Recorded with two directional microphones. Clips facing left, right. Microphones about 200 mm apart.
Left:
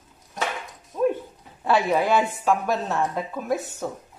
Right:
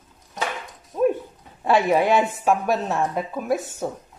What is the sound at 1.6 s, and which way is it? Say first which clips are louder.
A woman's voice: right 3 dB; 25° right (ahead or behind).